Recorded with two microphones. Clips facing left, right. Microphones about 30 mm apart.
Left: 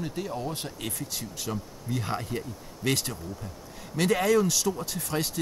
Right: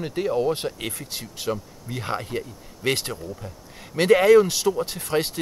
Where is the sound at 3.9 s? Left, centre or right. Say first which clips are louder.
Right 8 dB; right.